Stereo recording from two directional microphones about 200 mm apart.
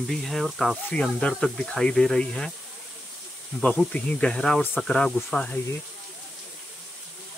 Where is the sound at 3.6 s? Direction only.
5° left (ahead or behind).